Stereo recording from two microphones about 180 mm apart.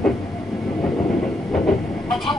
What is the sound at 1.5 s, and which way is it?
Train, centre (ahead or behind).